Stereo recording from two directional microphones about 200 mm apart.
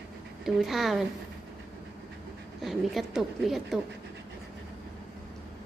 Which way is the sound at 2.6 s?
Centre (ahead or behind).